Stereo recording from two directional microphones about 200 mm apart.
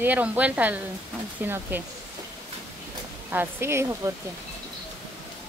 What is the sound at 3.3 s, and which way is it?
Speech, 10° right (ahead or behind).